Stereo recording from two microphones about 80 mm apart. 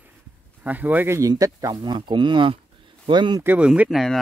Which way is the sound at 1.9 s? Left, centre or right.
Right.